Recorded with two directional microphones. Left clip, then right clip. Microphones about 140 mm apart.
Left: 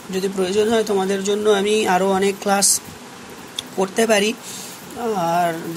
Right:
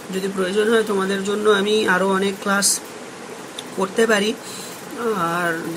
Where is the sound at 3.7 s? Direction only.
40° left (ahead or behind).